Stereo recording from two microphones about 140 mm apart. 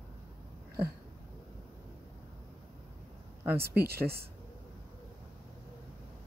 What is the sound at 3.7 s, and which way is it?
Speech, 90° right.